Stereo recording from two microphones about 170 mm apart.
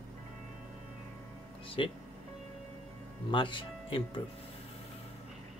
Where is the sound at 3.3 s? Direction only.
30° left (ahead or behind).